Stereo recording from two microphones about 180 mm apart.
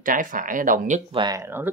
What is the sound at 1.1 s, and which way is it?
Speech, 20° right (ahead or behind).